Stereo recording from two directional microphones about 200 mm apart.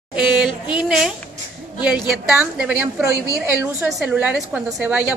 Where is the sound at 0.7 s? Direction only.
5° right (ahead or behind).